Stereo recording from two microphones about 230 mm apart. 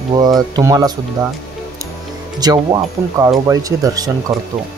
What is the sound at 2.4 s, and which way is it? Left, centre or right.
Speech, centre.